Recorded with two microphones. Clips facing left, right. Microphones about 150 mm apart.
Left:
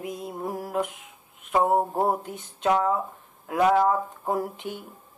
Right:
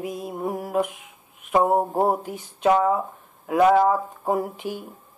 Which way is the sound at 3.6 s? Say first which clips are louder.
Right 4 dB; 35° right (ahead or behind).